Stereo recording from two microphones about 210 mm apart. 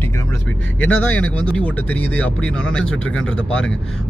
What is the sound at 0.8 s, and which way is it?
Speech, 5° left (ahead or behind).